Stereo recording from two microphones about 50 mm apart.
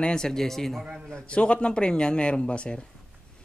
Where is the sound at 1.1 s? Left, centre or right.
Left.